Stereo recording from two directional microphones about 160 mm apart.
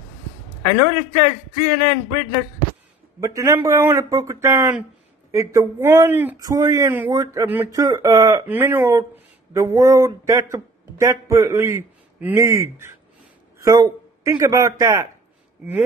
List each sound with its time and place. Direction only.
0.7 s a man's voice: 25° right (ahead or behind)
3.2 s a man's voice: 20° right (ahead or behind)